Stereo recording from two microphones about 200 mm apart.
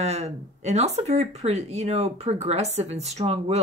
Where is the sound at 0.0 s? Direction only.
35° right (ahead or behind).